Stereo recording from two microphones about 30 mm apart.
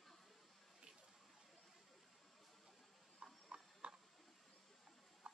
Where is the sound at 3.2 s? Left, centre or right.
Right.